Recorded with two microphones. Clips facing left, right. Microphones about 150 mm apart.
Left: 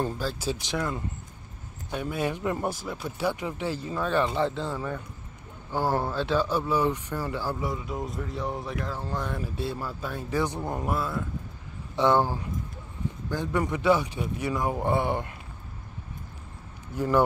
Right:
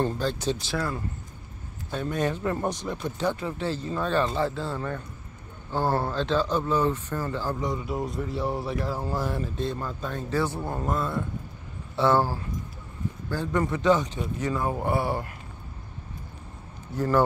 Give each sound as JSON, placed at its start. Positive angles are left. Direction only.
{"t": 0.0, "sound": "speech", "side_deg": 5}
{"t": 0.7, "sound": "speech", "side_deg": 20}
{"t": 4.7, "sound": "speech", "side_deg": 10}
{"t": 9.4, "sound": "speech", "side_deg": 10}
{"t": 12.0, "sound": "speech", "side_deg": 15}
{"t": 16.9, "sound": "speech", "side_deg": 10}